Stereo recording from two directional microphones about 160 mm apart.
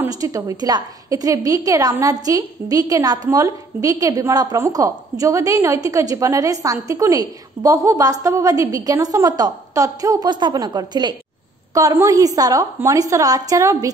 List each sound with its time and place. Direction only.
0.0 s a woman's voice: 20° right (ahead or behind)